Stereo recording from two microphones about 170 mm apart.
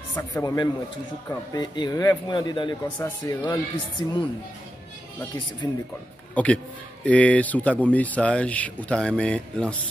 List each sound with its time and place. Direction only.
0.1 s a man's voice: 20° left (ahead or behind)
6.3 s a man's voice: 5° left (ahead or behind)